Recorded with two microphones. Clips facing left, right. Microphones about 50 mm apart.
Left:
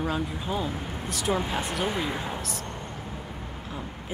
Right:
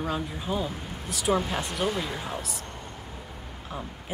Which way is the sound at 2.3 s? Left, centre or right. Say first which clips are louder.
Left 1 dB; centre.